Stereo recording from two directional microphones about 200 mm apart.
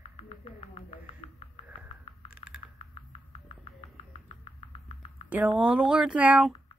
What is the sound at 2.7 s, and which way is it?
Music, 25° left (ahead or behind).